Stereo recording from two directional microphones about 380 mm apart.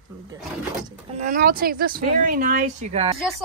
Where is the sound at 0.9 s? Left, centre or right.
Centre.